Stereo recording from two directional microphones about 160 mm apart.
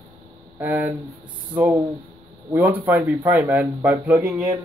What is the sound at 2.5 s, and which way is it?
A man's voice, 10° right (ahead or behind).